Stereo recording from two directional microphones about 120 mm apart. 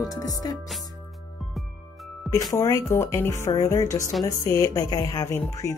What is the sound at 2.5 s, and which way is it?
Speech, 25° left (ahead or behind).